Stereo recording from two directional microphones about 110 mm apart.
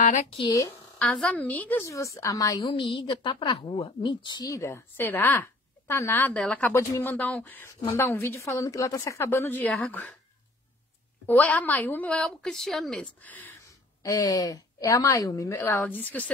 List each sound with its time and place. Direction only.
0.5 s a woman's voice: 30° left (ahead or behind)
0.9 s a woman's voice: 10° left (ahead or behind)
1.9 s a woman's voice: 30° left (ahead or behind)
2.7 s a woman's voice: 45° left (ahead or behind)
4.5 s a woman's voice: 25° left (ahead or behind); by 6.7 s 10° left (ahead or behind)
6.7 s a woman's voice: 25° left (ahead or behind)
11.2 s a woman's voice: 15° left (ahead or behind)
13.2 s a woman's voice: 15° left (ahead or behind)
14.0 s a woman's voice: 30° left (ahead or behind)
15.6 s a woman's voice: 20° left (ahead or behind)